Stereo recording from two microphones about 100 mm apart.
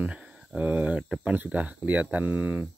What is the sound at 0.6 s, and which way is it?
Speech, 15° right (ahead or behind).